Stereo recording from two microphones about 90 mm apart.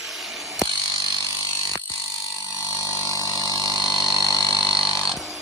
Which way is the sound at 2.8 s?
35° left (ahead or behind).